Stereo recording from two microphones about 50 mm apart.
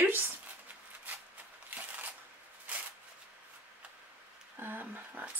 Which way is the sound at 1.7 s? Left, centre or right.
Right.